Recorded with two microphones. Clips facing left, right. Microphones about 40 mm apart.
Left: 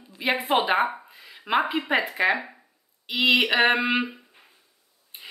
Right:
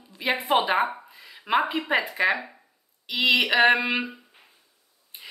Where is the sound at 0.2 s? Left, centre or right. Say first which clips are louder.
Even; centre.